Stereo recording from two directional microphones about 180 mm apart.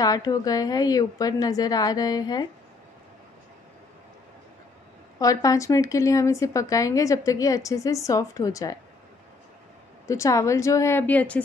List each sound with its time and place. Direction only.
0.0 s a woman's voice: 20° left (ahead or behind)
5.2 s a woman's voice: 20° left (ahead or behind)
10.0 s a woman's voice: 15° left (ahead or behind)